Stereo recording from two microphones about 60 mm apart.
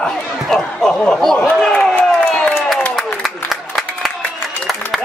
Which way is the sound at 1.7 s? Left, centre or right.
Centre.